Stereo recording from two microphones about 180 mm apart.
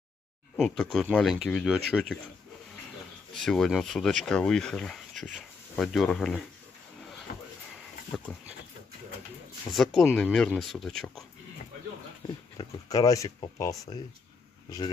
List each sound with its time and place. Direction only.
0.6 s speech: centre (ahead or behind)
3.4 s speech: centre (ahead or behind)
7.3 s a sound: 55° left (ahead or behind)
8.1 s speech: 5° left (ahead or behind)
9.7 s speech: centre (ahead or behind)
12.5 s speech: 20° left (ahead or behind)